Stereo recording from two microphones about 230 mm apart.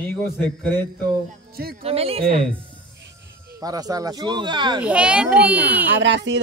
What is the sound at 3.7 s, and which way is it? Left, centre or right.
Speech, centre.